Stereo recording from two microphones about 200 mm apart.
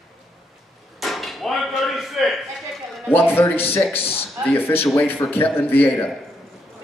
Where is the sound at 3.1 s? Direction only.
10° left (ahead or behind).